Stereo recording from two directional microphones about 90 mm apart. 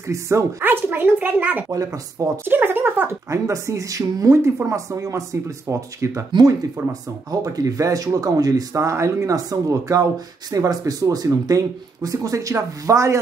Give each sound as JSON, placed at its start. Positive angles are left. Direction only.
{"t": 0.0, "sound": "speech", "side_deg": -35}
{"t": 0.7, "sound": "a child's voice", "side_deg": -20}
{"t": 1.7, "sound": "speech", "side_deg": -35}
{"t": 2.4, "sound": "speech", "side_deg": -25}